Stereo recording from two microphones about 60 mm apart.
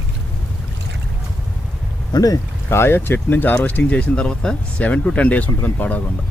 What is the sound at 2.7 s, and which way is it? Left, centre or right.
Speech, left.